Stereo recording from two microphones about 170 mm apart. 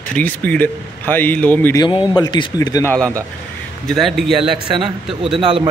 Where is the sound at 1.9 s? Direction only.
25° left (ahead or behind).